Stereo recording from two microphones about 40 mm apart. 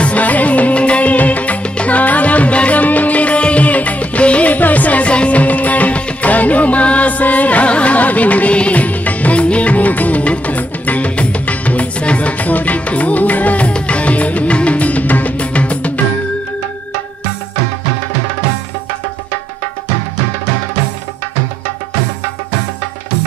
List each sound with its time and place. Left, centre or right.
0.0 s music of bollywood: left
1.1 s music: left